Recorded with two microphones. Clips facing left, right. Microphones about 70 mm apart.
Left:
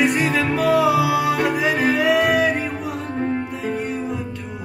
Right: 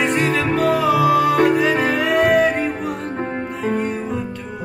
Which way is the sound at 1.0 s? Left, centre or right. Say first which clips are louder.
Right 4 dB; right.